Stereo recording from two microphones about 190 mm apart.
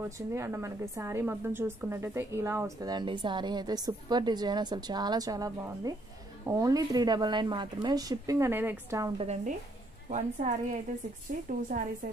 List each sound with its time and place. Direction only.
0.3 s a woman's voice: 15° right (ahead or behind)
9.2 s a woman's voice: 35° right (ahead or behind)